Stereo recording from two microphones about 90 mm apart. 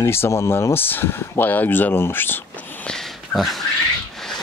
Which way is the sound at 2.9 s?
Centre (ahead or behind).